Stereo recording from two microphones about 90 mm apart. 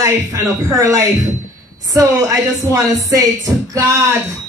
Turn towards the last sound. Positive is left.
turn(degrees=-35)  # may be behind; listen again after turning